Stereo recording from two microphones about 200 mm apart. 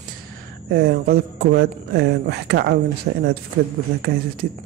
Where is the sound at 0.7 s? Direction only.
50° right (ahead or behind).